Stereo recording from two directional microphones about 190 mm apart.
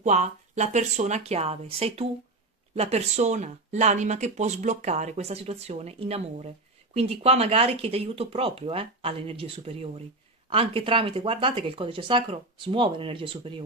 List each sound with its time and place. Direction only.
0.0 s speech: 35° right (ahead or behind)